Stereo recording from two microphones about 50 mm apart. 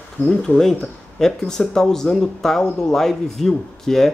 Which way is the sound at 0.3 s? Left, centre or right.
Left.